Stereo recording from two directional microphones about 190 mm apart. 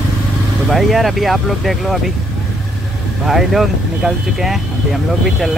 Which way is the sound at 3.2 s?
Centre (ahead or behind).